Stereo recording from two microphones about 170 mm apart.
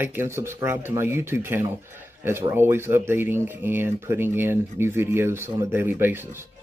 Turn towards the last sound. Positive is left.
turn(degrees=-15)  # may be behind; listen again after turning